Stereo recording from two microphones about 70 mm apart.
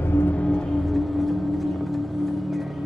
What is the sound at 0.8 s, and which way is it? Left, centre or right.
Music, centre.